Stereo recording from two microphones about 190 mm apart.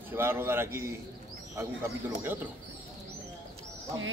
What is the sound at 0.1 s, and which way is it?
Speech, 10° right (ahead or behind).